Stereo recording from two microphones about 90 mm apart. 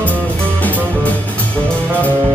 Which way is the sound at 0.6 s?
15° left (ahead or behind).